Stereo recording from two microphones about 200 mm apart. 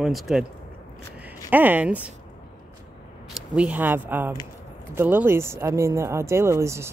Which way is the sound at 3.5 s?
10° right (ahead or behind).